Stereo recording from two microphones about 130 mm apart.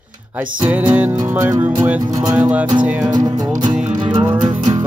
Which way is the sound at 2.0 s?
30° right (ahead or behind).